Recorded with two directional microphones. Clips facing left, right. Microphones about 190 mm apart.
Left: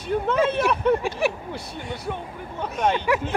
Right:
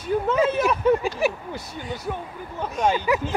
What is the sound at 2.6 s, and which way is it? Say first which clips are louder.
Speech: right 1 dB; centre (ahead or behind).